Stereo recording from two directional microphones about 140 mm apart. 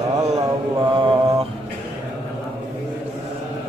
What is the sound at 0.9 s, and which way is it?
Mantra, 35° right (ahead or behind).